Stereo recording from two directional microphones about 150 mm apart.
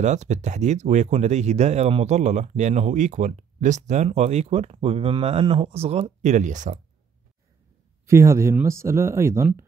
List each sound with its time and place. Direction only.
0.0 s speech: 50° right (ahead or behind)
8.1 s speech: 20° right (ahead or behind)